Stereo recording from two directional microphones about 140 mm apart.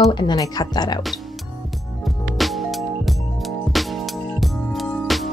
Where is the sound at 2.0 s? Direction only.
Centre (ahead or behind).